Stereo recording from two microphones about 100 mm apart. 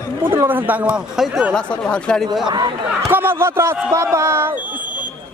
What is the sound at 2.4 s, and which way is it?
Speech, 45° right (ahead or behind).